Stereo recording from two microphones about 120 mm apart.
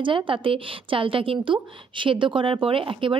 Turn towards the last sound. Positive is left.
turn(degrees=-45)  # may be behind; listen again after turning